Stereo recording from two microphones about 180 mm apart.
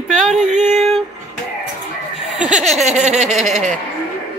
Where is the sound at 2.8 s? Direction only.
40° right (ahead or behind).